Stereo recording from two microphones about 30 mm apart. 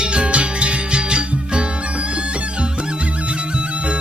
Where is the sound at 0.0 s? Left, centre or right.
Right.